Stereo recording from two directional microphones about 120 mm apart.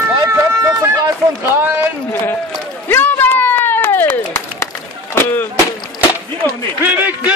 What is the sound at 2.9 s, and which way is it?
Run, 15° left (ahead or behind).